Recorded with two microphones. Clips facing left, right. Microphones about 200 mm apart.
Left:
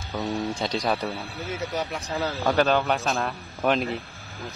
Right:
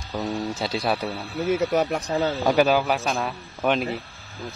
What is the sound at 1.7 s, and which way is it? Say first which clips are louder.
Speech: right 7 dB; 65° right (ahead or behind).